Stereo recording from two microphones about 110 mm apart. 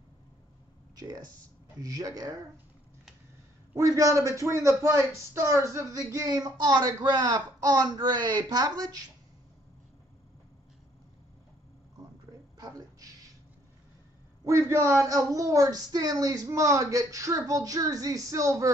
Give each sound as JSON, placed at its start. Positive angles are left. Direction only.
{"t": 0.9, "sound": "a man's voice", "side_deg": -35}
{"t": 3.7, "sound": "a man's voice", "side_deg": -30}
{"t": 12.5, "sound": "a sound", "side_deg": -35}
{"t": 14.4, "sound": "a man's voice", "side_deg": -30}